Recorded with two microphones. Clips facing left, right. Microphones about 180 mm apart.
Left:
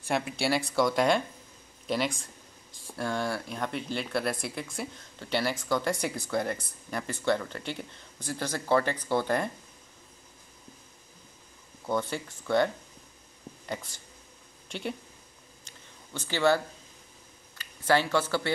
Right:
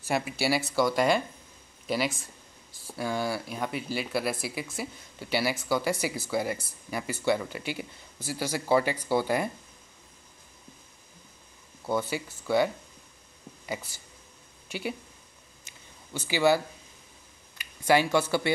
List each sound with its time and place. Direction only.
0.0 s speech: 5° right (ahead or behind)
11.8 s speech: 5° right (ahead or behind)
15.6 s a sound: 10° right (ahead or behind)
17.6 s speech: 15° right (ahead or behind)